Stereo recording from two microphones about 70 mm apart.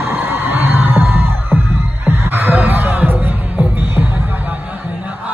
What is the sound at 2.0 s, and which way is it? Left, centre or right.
Music, right.